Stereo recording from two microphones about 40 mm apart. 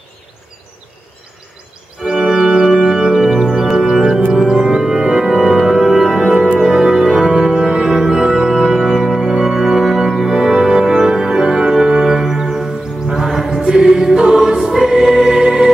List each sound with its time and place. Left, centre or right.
2.2 s music: centre
9.3 s organ: centre
11.7 s music: centre